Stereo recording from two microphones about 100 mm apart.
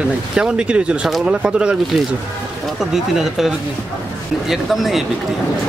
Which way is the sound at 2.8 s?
5° right (ahead or behind).